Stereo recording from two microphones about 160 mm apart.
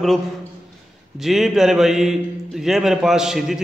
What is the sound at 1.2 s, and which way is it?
A man's voice, centre (ahead or behind).